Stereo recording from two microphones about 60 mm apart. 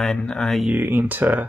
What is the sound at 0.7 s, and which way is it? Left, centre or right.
Speech, right.